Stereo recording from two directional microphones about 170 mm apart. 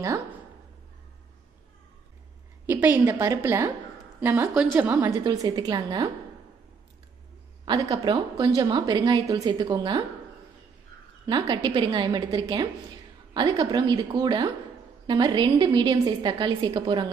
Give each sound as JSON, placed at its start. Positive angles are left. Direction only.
{"t": 2.6, "sound": "a woman's voice", "side_deg": -10}
{"t": 7.6, "sound": "a woman's voice", "side_deg": -25}
{"t": 11.2, "sound": "a woman's voice", "side_deg": -25}